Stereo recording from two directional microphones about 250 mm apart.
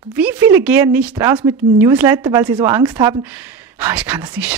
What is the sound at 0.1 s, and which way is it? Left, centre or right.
Speech, centre.